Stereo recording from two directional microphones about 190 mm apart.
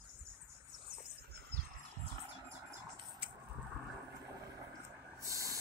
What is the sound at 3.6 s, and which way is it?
Vehicle, centre (ahead or behind).